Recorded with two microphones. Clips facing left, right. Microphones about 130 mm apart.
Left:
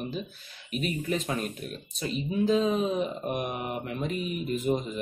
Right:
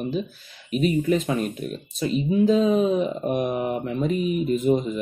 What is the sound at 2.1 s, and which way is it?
Speech, 40° right (ahead or behind).